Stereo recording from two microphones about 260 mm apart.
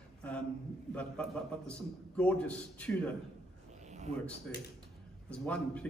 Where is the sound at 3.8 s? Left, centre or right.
Right.